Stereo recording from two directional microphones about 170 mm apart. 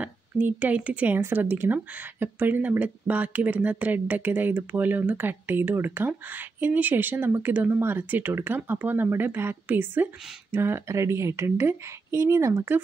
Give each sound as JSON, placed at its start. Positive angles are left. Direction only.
{"t": 0.0, "sound": "a woman's voice", "side_deg": -10}